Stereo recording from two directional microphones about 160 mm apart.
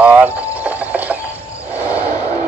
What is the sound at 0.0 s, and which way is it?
Cricket, 10° right (ahead or behind).